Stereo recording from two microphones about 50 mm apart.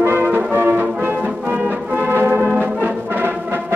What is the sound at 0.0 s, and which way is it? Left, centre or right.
Music, right.